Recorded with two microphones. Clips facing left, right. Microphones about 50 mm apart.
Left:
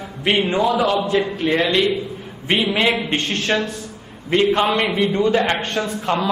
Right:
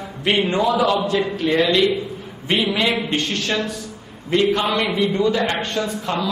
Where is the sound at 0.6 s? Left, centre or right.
Centre.